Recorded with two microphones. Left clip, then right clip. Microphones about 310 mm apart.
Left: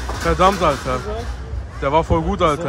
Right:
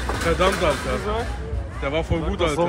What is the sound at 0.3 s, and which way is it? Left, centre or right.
Speech, centre.